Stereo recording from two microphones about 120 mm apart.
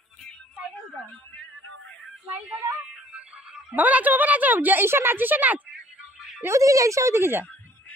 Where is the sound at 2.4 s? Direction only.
5° right (ahead or behind).